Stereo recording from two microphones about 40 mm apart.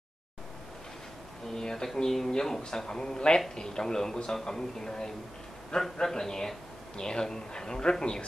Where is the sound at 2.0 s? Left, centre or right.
Centre.